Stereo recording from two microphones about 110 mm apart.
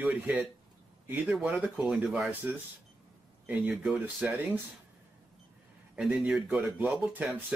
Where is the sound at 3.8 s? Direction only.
10° right (ahead or behind).